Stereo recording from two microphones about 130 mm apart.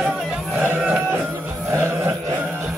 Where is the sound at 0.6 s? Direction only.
10° right (ahead or behind).